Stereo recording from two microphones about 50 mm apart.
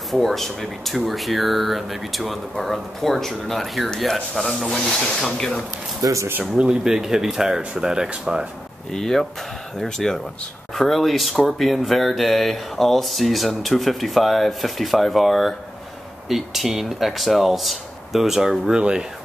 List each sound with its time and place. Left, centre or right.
0.1 s speech: centre
6.0 s speech: right
6.6 s speech: centre
8.9 s speech: centre